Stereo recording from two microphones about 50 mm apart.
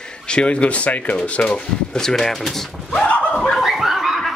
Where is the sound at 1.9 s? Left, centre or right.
Centre.